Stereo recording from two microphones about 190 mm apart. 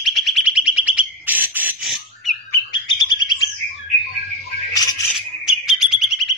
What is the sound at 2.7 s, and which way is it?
Bird, 25° left (ahead or behind).